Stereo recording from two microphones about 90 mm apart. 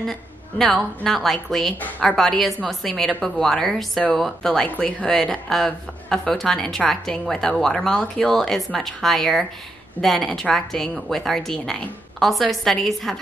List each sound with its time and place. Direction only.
0.0 s a woman's voice: 5° left (ahead or behind)
1.8 s a woman's voice: 20° left (ahead or behind)
2.0 s a woman's voice: 5° left (ahead or behind)